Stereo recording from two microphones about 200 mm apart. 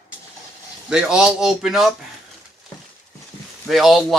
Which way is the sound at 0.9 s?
5° right (ahead or behind).